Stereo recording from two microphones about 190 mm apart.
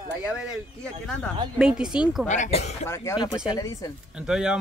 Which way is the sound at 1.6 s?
5° right (ahead or behind).